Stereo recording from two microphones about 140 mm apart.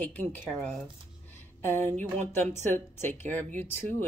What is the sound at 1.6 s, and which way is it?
Speech, 15° left (ahead or behind).